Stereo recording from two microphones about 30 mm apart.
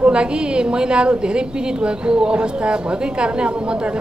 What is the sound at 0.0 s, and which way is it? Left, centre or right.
A woman's voice, right.